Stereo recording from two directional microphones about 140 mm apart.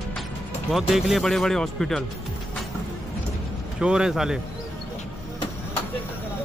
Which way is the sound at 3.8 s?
5° right (ahead or behind).